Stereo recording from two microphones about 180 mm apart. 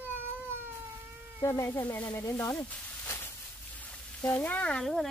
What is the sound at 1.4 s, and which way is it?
Speech, 15° left (ahead or behind).